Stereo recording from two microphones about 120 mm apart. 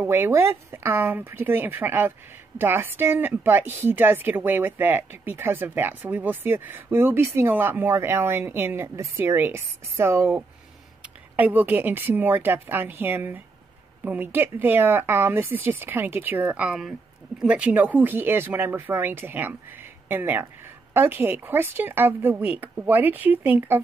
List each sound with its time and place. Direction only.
0.0 s a woman's voice: 20° right (ahead or behind)